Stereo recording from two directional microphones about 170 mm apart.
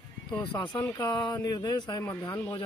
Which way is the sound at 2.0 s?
15° left (ahead or behind).